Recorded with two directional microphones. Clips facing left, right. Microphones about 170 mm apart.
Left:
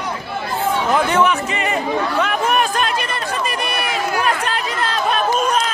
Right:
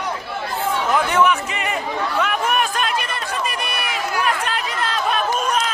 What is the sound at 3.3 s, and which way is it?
Run, 35° left (ahead or behind).